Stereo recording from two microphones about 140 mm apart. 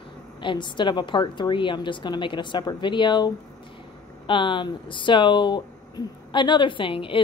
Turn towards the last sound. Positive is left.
turn(degrees=40)  # may be behind; listen again after turning